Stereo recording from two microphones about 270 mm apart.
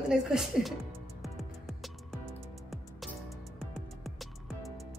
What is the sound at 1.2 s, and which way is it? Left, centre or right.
Music, centre.